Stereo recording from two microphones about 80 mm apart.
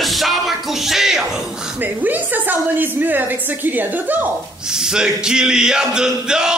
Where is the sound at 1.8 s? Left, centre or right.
Right.